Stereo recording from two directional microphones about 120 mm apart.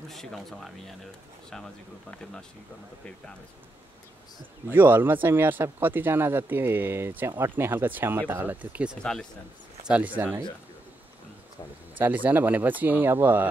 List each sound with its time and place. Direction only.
0.1 s speech: centre (ahead or behind)
4.6 s speech: 15° right (ahead or behind)
9.0 s speech: 5° left (ahead or behind)
9.8 s speech: 10° right (ahead or behind)
12.0 s speech: 15° right (ahead or behind)